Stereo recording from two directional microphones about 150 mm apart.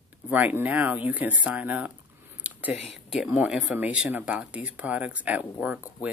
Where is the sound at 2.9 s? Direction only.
Centre (ahead or behind).